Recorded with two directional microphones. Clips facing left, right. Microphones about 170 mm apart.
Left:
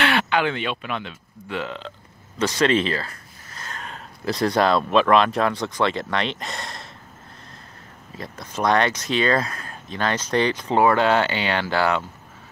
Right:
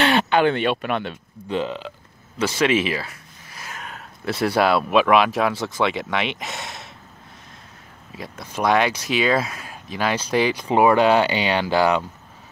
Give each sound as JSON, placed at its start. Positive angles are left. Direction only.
{"t": 0.0, "sound": "a sound", "side_deg": -25}
{"t": 0.3, "sound": "speech", "side_deg": -45}
{"t": 1.5, "sound": "speech", "side_deg": -20}
{"t": 8.2, "sound": "speech", "side_deg": 0}